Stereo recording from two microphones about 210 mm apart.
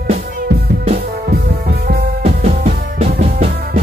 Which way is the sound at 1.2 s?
50° right (ahead or behind).